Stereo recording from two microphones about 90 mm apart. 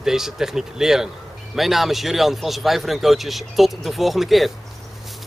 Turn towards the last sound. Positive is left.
turn(degrees=0)  # may be behind; listen again after turning